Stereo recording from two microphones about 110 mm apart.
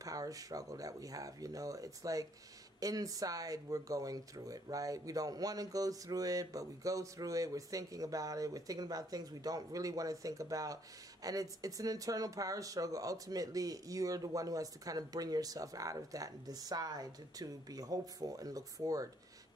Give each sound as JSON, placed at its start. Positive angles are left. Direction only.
{"t": 0.0, "sound": "speech", "side_deg": -30}